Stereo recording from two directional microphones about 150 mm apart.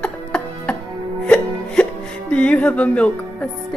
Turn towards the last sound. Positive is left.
turn(degrees=10)  # may be behind; listen again after turning